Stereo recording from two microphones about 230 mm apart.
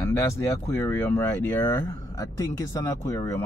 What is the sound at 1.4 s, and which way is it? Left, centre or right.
Speech, centre.